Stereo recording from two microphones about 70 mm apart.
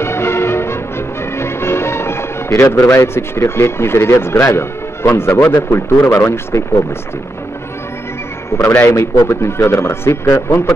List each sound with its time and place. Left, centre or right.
0.0 s music: left
2.6 s speech: left
8.8 s speech: left